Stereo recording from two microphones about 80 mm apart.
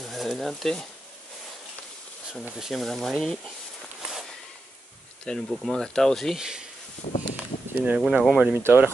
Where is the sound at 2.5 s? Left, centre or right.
Centre.